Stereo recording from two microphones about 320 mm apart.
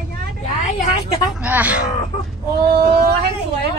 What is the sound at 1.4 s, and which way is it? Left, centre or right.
Speech, centre.